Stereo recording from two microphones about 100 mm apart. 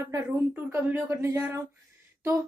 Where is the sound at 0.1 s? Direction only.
25° right (ahead or behind).